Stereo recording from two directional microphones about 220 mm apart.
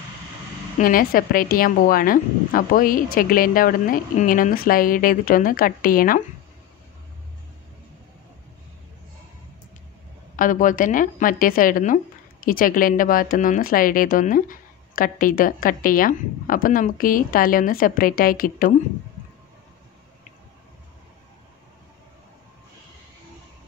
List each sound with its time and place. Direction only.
0.7 s a woman's voice: 40° left (ahead or behind)
10.3 s a woman's voice: 35° left (ahead or behind)